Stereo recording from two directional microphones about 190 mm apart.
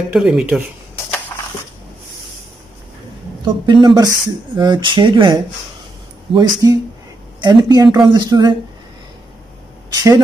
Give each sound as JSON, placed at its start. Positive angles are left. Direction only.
{"t": 0.1, "sound": "speech", "side_deg": -5}
{"t": 3.6, "sound": "speech", "side_deg": -25}
{"t": 9.9, "sound": "speech", "side_deg": -20}